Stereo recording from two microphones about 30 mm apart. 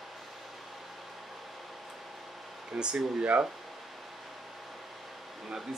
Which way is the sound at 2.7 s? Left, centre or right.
Right.